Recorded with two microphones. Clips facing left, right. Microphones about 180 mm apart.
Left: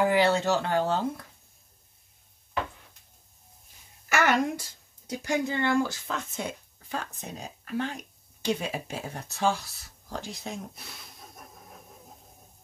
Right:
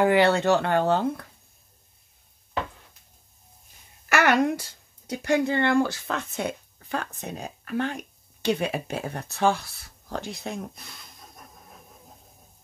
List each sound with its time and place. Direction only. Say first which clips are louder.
0.0 s speech: right 3 dB; 65° right (ahead or behind)
4.1 s speech: right 4 dB; 65° right (ahead or behind)
10.9 s a sound: even; 5° left (ahead or behind)